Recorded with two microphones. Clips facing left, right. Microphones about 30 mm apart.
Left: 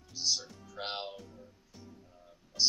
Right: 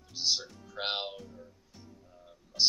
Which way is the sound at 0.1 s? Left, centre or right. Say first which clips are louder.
Right 2 dB; right.